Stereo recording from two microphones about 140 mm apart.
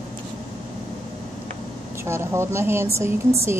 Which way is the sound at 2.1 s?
20° right (ahead or behind).